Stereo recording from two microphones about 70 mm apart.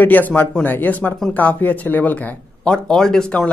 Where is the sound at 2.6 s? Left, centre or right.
Centre.